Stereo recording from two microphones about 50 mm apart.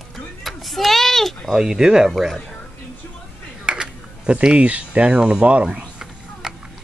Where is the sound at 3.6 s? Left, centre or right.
Centre.